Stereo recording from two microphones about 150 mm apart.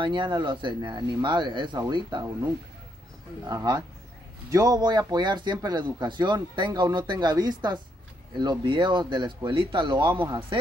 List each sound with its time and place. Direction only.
0.0 s speech: 30° right (ahead or behind)
3.4 s speech: 25° right (ahead or behind)